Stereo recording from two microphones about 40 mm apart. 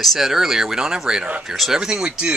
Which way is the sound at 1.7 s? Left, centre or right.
Centre.